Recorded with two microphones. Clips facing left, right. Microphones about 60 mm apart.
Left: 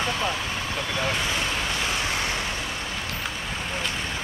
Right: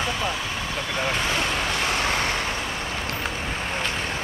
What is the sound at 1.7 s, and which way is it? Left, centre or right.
Vehicle, right.